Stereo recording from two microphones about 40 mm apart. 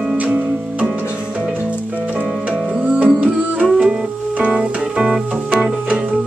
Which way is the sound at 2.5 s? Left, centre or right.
Right.